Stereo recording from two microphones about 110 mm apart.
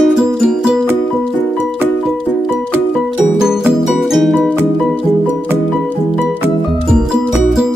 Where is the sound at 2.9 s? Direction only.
5° right (ahead or behind).